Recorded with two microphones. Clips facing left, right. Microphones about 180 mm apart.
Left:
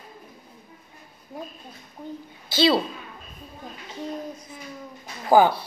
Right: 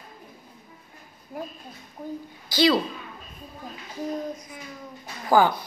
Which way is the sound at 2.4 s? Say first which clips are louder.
Even; 25° left (ahead or behind).